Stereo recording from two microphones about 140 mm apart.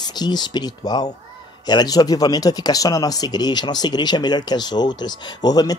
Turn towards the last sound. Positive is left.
turn(degrees=30)  # may be behind; listen again after turning